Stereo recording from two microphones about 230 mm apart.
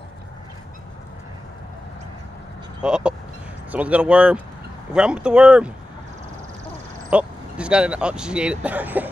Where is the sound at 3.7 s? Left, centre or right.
Centre.